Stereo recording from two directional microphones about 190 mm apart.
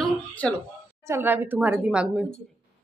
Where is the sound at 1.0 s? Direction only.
10° right (ahead or behind).